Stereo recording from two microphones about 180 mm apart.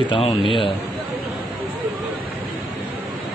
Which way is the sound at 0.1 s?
30° left (ahead or behind).